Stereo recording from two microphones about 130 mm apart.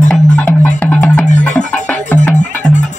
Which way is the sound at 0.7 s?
10° left (ahead or behind).